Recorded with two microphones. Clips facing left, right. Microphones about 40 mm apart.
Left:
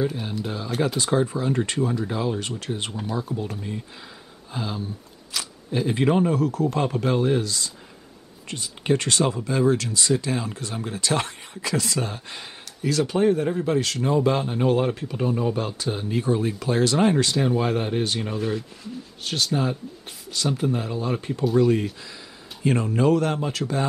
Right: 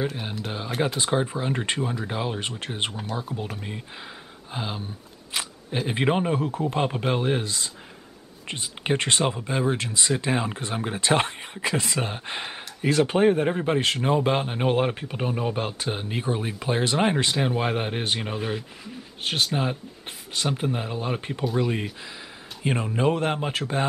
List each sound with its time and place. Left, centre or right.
0.7 s speech: centre
0.9 s speech: right